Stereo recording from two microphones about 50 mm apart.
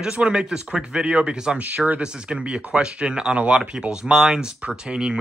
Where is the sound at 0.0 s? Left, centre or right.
Centre.